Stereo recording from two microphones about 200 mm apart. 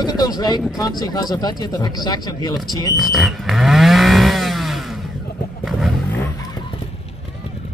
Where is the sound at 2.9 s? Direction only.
Centre (ahead or behind).